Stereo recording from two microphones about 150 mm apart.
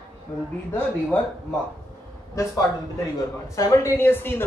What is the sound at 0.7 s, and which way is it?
Speech, 10° left (ahead or behind).